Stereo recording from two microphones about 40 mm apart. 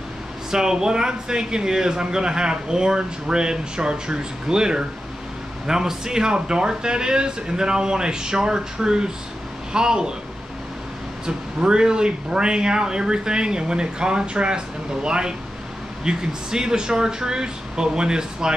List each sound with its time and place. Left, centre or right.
0.5 s speech: centre
11.2 s speech: right